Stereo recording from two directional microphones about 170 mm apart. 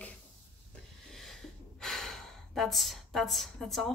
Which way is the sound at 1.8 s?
Centre (ahead or behind).